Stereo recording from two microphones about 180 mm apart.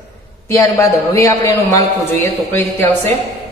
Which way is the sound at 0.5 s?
15° left (ahead or behind).